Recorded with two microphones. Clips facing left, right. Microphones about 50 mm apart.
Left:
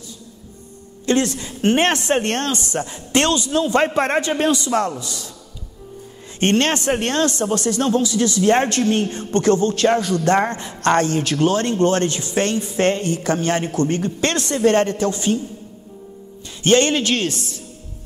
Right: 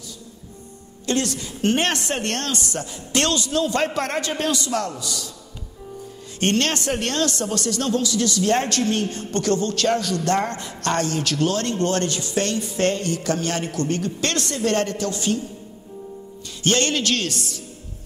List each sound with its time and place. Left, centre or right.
1.0 s speech: left
6.4 s speech: left
16.6 s speech: left